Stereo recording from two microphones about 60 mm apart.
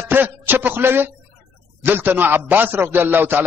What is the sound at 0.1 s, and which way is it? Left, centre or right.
A man's voice, right.